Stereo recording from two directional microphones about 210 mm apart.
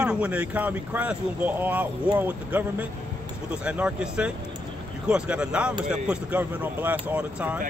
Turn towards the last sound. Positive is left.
turn(degrees=-5)  # may be behind; listen again after turning